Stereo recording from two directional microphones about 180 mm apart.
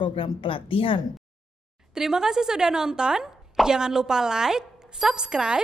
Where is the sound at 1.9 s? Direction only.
5° right (ahead or behind).